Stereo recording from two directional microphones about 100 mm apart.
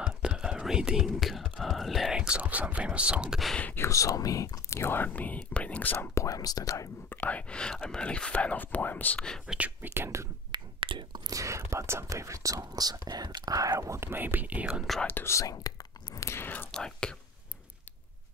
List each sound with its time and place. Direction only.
0.2 s speech: 10° right (ahead or behind)
3.5 s speech: 15° left (ahead or behind)
3.8 s speech: 35° left (ahead or behind); by 5.9 s 15° left (ahead or behind)
5.9 s speech: 30° left (ahead or behind)
7.1 s speech: 15° left (ahead or behind)
9.5 s speech: 15° right (ahead or behind)
10.5 s whispering: 55° right (ahead or behind)
11.2 s speech: 35° right (ahead or behind); by 14.8 s 15° right (ahead or behind)
15.0 s whispering: 25° left (ahead or behind)
16.7 s speech: 5° left (ahead or behind)